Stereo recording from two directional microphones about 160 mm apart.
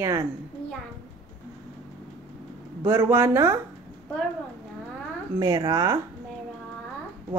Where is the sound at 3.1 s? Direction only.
15° right (ahead or behind).